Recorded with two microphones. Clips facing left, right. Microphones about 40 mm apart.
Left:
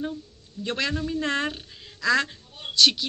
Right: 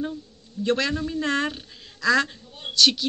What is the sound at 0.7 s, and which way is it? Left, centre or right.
A woman's voice, centre.